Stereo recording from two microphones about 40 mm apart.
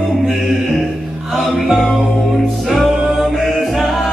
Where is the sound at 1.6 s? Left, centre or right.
Centre.